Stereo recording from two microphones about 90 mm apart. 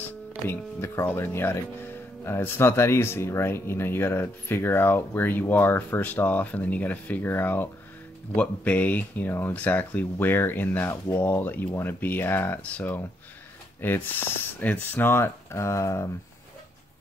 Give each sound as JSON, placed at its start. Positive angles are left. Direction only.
{"t": 0.5, "sound": "speech", "side_deg": 25}